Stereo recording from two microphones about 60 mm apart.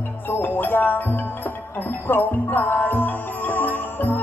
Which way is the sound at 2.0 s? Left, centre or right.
Left.